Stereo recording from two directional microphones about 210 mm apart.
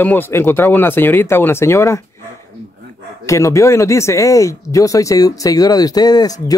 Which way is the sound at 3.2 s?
15° left (ahead or behind).